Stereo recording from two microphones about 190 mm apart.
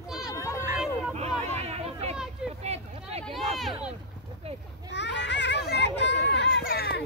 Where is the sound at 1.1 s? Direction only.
35° right (ahead or behind).